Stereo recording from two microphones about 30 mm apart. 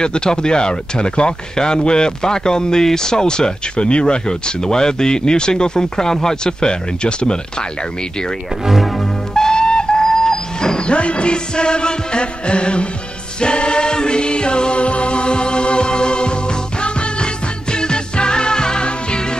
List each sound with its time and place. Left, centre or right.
0.0 s speech: left
3.7 s speech: left
9.3 s music: left
10.9 s music: left